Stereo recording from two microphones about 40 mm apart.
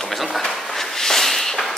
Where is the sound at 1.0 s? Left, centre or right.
Centre.